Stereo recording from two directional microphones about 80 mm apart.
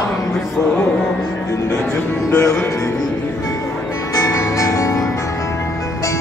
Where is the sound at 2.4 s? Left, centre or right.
Left.